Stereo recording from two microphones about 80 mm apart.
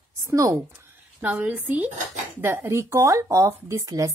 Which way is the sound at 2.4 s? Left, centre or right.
Right.